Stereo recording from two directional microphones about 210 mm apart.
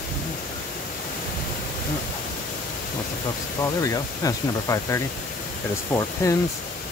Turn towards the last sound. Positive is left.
turn(degrees=15)  # may be behind; listen again after turning